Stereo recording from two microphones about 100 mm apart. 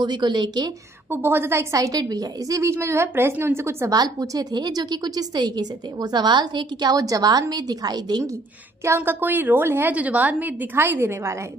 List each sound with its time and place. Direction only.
0.0 s a woman's voice: 45° right (ahead or behind)
1.1 s a woman's voice: 25° right (ahead or behind)
3.9 s a woman's voice: 40° right (ahead or behind)
8.8 s a woman's voice: 25° right (ahead or behind)